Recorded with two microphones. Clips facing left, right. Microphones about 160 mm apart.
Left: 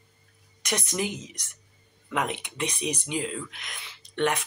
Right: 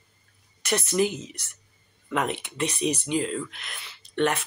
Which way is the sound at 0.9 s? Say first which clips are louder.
Right 6 dB; 15° left (ahead or behind).